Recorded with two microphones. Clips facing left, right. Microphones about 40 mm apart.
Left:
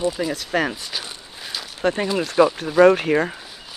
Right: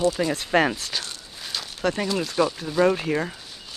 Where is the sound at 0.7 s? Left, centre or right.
Centre.